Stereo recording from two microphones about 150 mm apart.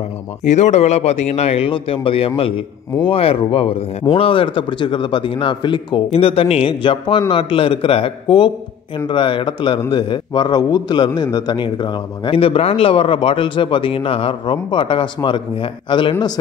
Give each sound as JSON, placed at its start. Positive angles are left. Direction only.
{"t": 0.4, "sound": "a man's voice", "side_deg": 50}